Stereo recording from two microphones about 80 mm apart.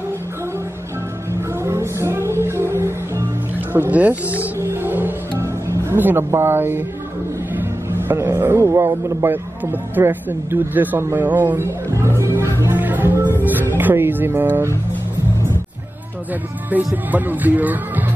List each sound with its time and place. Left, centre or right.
1.6 s music: right
3.7 s a man's voice: right
4.6 s music: right
5.4 s music: right
5.9 s a man's voice: right
11.9 s music: right
16.7 s a man's voice: right